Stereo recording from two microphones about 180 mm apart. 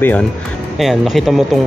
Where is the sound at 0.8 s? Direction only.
Centre (ahead or behind).